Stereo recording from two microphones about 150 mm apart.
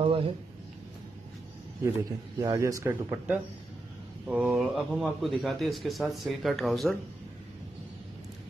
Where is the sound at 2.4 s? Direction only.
20° right (ahead or behind).